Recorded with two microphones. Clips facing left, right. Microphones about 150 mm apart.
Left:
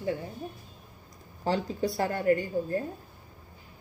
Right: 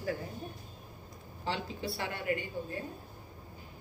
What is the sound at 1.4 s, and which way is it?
A woman's voice, 40° left (ahead or behind).